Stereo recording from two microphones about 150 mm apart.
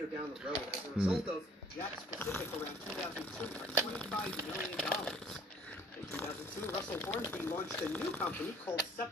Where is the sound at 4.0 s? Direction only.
5° left (ahead or behind).